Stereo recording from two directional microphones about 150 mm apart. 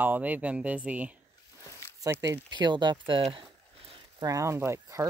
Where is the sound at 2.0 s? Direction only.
20° right (ahead or behind).